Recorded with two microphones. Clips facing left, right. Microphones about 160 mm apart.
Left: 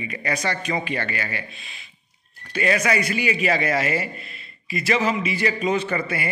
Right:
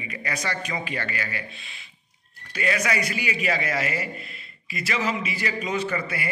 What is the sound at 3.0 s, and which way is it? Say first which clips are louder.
A man's voice: left 5 dB; 25° left (ahead or behind).